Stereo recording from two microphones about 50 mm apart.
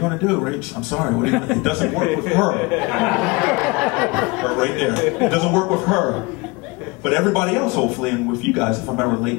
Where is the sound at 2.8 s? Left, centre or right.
Centre.